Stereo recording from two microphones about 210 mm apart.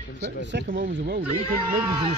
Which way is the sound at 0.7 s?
60° right (ahead or behind).